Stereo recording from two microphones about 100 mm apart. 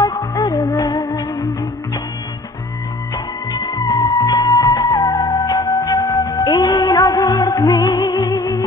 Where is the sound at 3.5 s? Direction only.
40° left (ahead or behind).